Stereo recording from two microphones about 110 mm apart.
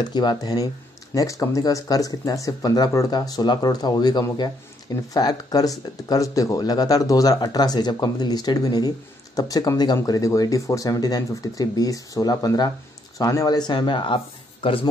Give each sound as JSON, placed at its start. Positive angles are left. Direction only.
{"t": 0.0, "sound": "speech", "side_deg": 40}